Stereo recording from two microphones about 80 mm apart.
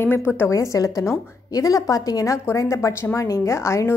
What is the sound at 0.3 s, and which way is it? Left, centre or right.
A woman's voice, left.